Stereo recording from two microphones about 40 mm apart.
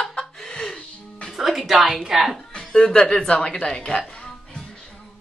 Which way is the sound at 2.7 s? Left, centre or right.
Left.